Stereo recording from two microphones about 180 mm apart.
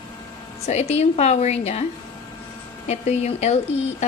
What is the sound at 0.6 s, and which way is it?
Speech, 35° left (ahead or behind).